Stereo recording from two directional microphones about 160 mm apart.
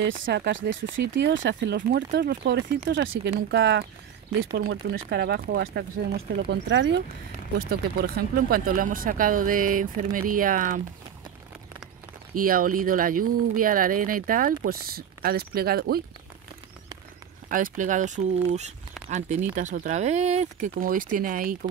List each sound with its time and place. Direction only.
0.0 s speech: 90° right
1.8 s speech: 80° right
7.5 s speech: 70° right (ahead or behind)
12.4 s speech: 60° right (ahead or behind)
17.5 s speech: 55° right (ahead or behind)
19.5 s speech: 55° right (ahead or behind)
20.8 s speech: 60° right (ahead or behind)